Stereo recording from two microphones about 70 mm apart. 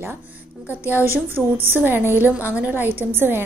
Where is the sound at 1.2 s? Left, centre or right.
Right.